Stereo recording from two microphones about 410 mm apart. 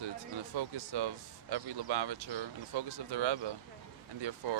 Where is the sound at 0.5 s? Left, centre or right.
Right.